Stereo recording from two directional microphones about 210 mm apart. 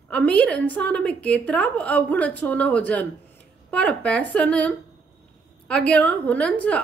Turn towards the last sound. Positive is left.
turn(degrees=5)  # may be behind; listen again after turning